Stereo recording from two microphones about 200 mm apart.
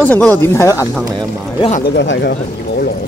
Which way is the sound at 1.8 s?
55° left (ahead or behind).